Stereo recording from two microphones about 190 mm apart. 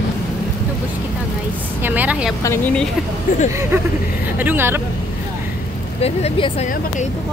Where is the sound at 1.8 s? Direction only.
10° right (ahead or behind).